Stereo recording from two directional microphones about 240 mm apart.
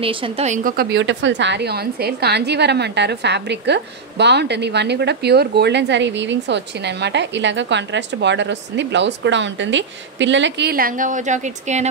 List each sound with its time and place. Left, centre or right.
0.0 s a woman's voice: right